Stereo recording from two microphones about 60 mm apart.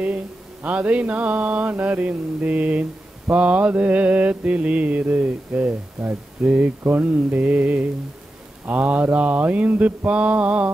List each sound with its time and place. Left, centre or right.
0.0 s mantra: right